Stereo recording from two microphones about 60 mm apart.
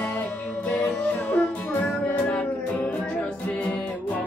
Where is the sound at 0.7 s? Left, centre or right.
Left.